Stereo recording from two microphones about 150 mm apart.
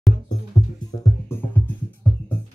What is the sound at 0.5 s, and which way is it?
Music, 20° left (ahead or behind).